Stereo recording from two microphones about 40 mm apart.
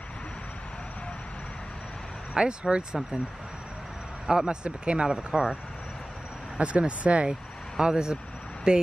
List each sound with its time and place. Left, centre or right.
2.3 s speech: right
4.3 s speech: centre
4.6 s speech: right
5.0 s speech: centre
6.6 s speech: right